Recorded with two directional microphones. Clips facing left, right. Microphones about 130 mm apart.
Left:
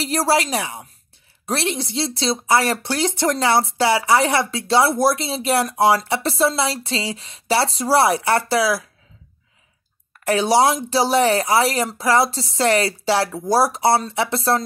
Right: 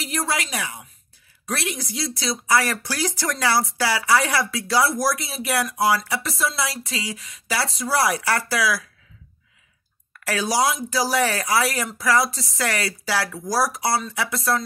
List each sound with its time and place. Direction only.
0.0 s a woman's voice: 30° left (ahead or behind)
10.2 s speech: 25° left (ahead or behind)